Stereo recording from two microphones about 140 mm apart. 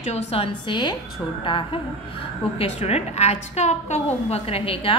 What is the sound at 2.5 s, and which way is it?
A woman's voice, 50° left (ahead or behind).